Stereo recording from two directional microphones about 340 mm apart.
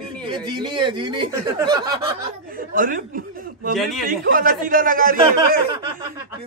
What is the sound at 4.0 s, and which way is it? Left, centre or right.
A man's voice, right.